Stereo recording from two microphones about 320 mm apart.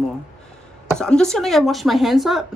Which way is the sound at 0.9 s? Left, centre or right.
Centre.